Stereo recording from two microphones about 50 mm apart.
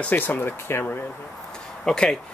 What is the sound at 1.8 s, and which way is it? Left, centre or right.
Speech, centre.